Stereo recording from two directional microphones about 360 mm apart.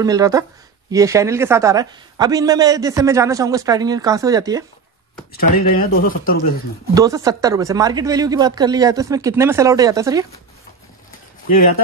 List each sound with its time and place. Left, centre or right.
0.0 s a man's voice: centre
5.3 s speech: left
6.9 s a man's voice: centre